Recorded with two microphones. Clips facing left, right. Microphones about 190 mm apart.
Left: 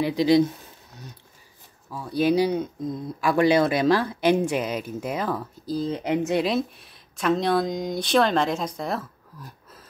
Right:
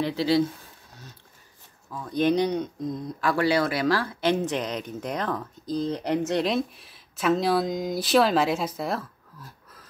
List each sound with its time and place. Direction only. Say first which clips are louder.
0.0 s speech: left 4 dB; 15° left (ahead or behind)
1.9 s speech: left 1 dB; 10° left (ahead or behind)
3.2 s speech: left 4 dB; 15° left (ahead or behind); by 9.0 s 5° right (ahead or behind)